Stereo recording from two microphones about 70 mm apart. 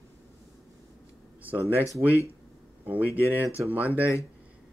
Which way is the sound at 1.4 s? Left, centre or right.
Right.